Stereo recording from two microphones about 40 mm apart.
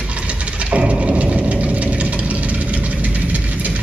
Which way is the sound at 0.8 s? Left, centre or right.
Right.